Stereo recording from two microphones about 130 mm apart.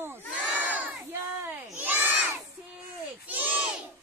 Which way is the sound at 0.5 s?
10° right (ahead or behind).